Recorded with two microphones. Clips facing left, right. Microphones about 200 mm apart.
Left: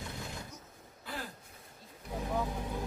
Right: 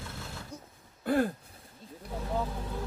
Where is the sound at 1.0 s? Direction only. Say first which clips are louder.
Right 16 dB; 55° right (ahead or behind).